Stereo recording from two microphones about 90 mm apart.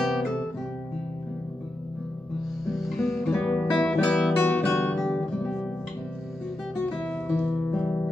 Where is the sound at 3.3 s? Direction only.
15° left (ahead or behind).